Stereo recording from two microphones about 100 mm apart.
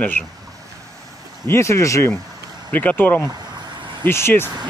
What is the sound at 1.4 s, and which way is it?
Speech, 30° left (ahead or behind).